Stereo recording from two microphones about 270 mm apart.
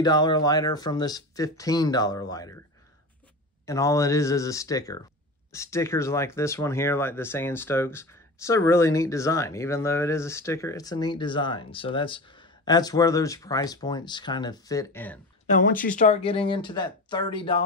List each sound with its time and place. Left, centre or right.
0.0 s speech: centre
3.6 s speech: centre
15.4 s speech: left